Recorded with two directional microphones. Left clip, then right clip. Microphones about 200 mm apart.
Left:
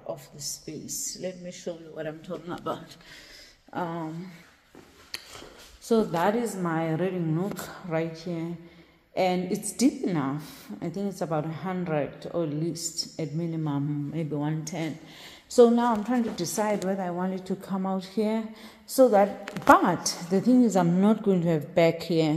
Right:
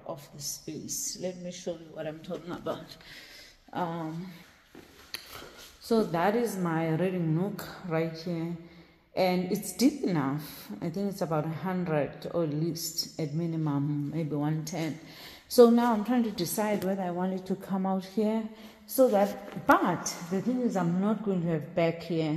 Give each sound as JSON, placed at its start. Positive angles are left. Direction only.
{"t": 0.1, "sound": "a woman's voice", "side_deg": 0}
{"t": 2.2, "sound": "a woman's voice", "side_deg": 15}
{"t": 3.7, "sound": "a woman's voice", "side_deg": 5}
{"t": 5.1, "sound": "a sound", "side_deg": 5}
{"t": 5.9, "sound": "a woman's voice", "side_deg": 5}
{"t": 18.9, "sound": "a woman's voice", "side_deg": 10}
{"t": 20.7, "sound": "a woman's voice", "side_deg": 45}